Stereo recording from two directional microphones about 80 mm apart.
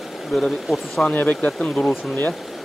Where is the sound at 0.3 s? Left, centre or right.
Centre.